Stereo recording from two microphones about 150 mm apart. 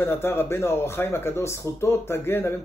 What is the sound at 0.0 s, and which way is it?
Speech, 15° left (ahead or behind).